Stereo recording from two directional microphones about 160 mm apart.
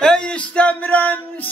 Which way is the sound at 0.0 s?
5° left (ahead or behind).